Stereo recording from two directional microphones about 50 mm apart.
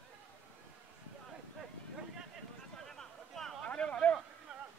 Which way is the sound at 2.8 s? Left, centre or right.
Centre.